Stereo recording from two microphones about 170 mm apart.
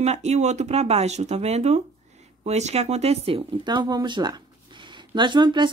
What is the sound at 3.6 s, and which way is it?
Speech, 25° right (ahead or behind).